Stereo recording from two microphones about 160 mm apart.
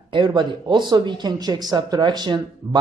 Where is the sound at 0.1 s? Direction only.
30° right (ahead or behind).